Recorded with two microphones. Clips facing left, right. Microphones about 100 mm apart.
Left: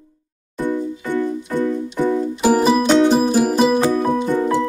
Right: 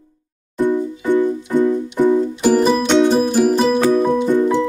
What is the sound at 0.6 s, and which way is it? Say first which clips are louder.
Music: right 5 dB; 15° right (ahead or behind).